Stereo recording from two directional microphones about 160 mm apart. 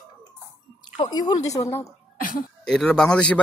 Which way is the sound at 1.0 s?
25° left (ahead or behind).